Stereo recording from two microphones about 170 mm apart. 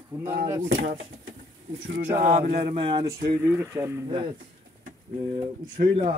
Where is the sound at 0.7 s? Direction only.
90° right.